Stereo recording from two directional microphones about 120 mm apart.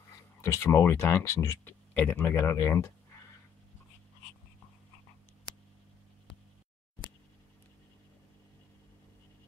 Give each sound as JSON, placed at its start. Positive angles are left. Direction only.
{"t": 0.4, "sound": "speech", "side_deg": 20}